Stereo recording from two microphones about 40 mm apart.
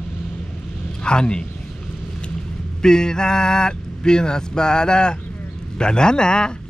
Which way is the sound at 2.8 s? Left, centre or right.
Centre.